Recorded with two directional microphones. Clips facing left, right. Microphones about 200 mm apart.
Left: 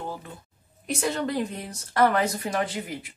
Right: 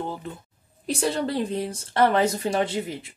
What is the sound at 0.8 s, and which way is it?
A woman's voice, 35° right (ahead or behind).